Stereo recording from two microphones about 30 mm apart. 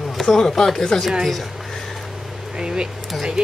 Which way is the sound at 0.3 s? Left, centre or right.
Centre.